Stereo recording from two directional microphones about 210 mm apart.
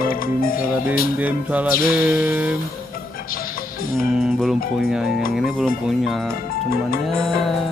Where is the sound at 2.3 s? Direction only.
5° right (ahead or behind).